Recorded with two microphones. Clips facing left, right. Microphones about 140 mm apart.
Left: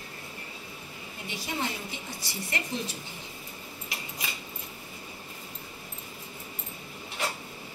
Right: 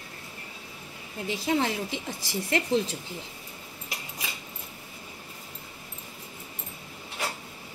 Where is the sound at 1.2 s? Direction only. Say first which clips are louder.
Right 7 dB; 90° right.